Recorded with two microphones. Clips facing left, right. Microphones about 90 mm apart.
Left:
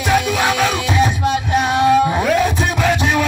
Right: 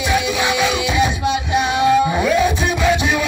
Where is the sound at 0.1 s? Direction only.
40° left (ahead or behind).